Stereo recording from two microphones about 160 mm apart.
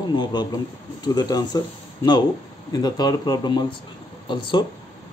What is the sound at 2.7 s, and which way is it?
A man's voice, 25° left (ahead or behind).